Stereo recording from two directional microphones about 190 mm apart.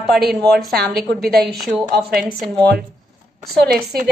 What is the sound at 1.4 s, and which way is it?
Speech, centre (ahead or behind).